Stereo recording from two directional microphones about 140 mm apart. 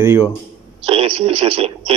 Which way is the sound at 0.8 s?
40° right (ahead or behind).